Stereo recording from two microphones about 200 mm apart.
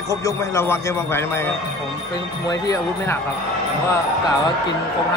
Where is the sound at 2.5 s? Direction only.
15° left (ahead or behind).